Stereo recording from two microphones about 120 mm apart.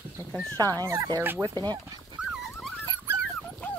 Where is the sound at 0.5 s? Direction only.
30° right (ahead or behind).